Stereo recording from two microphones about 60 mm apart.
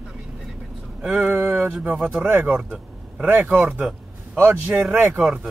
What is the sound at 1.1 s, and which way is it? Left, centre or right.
Speech, right.